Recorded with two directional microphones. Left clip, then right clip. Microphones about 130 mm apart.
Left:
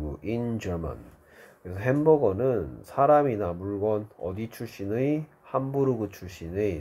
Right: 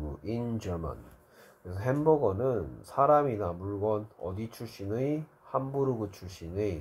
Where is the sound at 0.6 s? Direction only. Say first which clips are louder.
Left 4 dB; 20° left (ahead or behind).